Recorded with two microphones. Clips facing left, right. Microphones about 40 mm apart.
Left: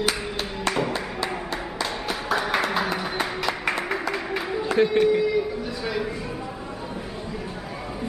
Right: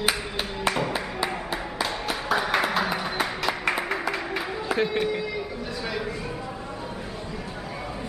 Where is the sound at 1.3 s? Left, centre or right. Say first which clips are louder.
Left 1 dB; centre.